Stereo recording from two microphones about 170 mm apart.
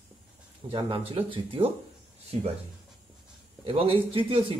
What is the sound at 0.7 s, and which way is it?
Speech, 30° right (ahead or behind).